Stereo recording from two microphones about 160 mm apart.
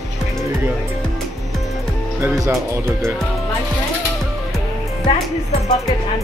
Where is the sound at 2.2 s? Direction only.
15° right (ahead or behind).